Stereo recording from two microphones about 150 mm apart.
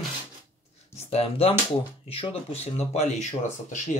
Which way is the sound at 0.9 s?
40° left (ahead or behind).